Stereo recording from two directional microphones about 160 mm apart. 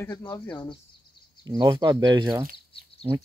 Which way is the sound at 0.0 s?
15° left (ahead or behind).